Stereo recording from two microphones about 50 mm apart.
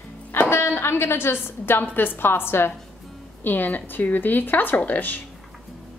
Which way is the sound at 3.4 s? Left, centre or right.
Left.